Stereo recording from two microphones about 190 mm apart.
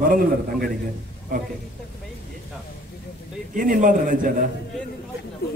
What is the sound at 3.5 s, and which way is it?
Speech, 45° right (ahead or behind).